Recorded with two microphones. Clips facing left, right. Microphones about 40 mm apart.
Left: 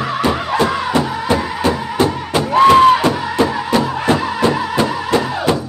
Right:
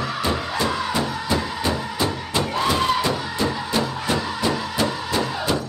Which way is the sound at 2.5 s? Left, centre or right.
Left.